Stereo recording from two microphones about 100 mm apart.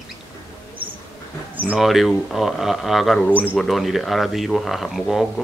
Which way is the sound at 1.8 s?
Centre (ahead or behind).